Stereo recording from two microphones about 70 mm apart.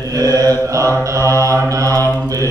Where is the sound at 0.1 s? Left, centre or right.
Right.